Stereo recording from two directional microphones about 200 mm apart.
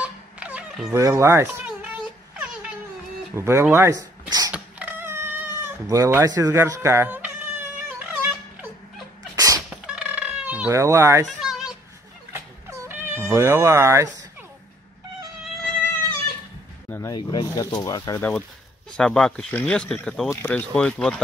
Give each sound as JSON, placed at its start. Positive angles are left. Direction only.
{"t": 0.0, "sound": "a sound", "side_deg": -5}
{"t": 0.9, "sound": "a child's voice", "side_deg": -15}
{"t": 3.3, "sound": "speech", "side_deg": -10}
{"t": 4.5, "sound": "cat", "side_deg": -5}
{"t": 9.3, "sound": "sneeze", "side_deg": -15}
{"t": 9.8, "sound": "fowl", "side_deg": -5}
{"t": 11.2, "sound": "cat", "side_deg": 0}
{"t": 12.3, "sound": "cat", "side_deg": -15}
{"t": 16.9, "sound": "speech", "side_deg": 15}